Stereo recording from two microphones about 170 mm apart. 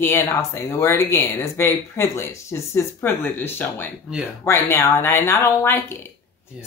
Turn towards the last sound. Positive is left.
turn(degrees=15)  # may be behind; listen again after turning